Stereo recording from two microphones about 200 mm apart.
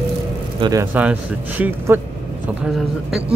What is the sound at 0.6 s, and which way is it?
Speech, 20° right (ahead or behind).